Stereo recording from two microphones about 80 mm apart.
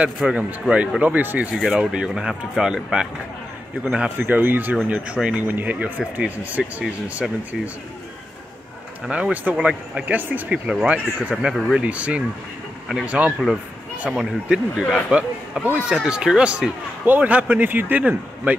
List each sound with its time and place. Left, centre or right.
0.3 s speech: centre
1.6 s speech: centre
5.5 s speech: right
9.1 s speech: centre
14.1 s a man's voice: centre
17.0 s speech: right